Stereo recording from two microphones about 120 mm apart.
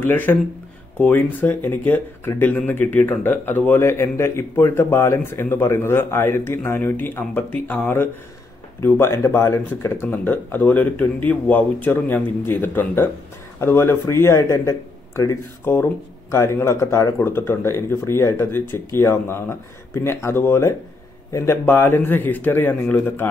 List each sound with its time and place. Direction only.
0.0 s speech: 15° left (ahead or behind)